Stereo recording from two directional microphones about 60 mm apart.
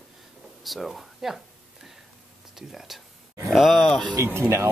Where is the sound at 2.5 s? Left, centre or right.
Centre.